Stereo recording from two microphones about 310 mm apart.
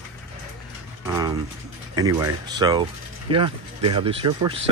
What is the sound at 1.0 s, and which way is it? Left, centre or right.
Mechanisms, centre.